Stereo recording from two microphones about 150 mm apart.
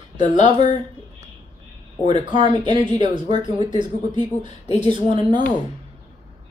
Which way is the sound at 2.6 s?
30° right (ahead or behind).